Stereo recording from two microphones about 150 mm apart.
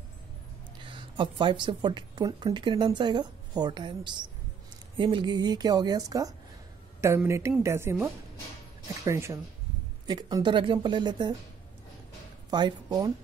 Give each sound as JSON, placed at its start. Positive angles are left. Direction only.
{"t": 0.9, "sound": "a woman's voice", "side_deg": -35}
{"t": 12.4, "sound": "speech", "side_deg": -30}